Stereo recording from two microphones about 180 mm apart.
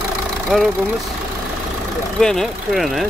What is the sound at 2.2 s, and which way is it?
Speech, centre (ahead or behind).